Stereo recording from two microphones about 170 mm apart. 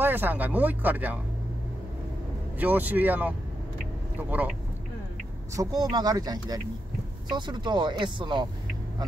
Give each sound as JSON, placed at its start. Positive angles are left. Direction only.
{"t": 0.0, "sound": "speech", "side_deg": -10}
{"t": 2.6, "sound": "speech", "side_deg": -10}
{"t": 5.6, "sound": "speech", "side_deg": -20}